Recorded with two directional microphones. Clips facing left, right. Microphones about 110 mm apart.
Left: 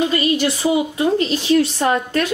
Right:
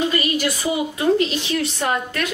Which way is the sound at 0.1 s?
25° left (ahead or behind).